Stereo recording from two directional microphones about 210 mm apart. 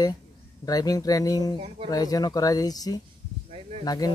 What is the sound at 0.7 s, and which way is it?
Speech, 15° left (ahead or behind).